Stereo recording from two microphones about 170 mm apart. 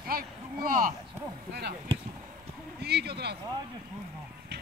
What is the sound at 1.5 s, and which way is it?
Speech, 65° right (ahead or behind).